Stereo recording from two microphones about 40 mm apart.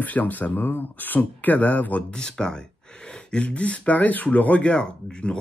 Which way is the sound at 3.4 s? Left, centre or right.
Left.